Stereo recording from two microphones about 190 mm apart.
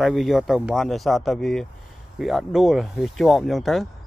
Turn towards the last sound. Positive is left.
turn(degrees=0)  # may be behind; listen again after turning